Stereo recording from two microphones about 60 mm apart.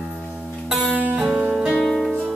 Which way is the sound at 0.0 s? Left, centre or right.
Centre.